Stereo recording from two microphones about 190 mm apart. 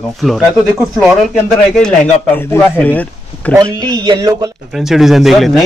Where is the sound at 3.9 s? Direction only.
20° right (ahead or behind).